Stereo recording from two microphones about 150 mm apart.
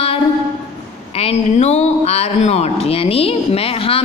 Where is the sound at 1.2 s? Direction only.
45° left (ahead or behind).